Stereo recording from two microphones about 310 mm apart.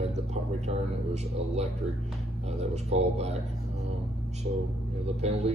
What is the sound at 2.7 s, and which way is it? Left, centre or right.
Speech, right.